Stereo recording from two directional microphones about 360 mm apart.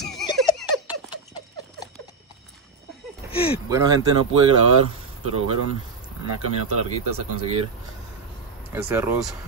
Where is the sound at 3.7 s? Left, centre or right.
Centre.